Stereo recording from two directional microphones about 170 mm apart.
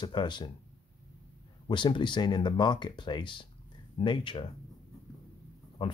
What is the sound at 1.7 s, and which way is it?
Speech, 30° left (ahead or behind).